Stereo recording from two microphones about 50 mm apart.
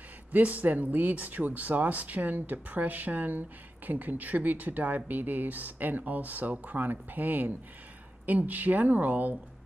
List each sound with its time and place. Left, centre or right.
0.3 s speech: right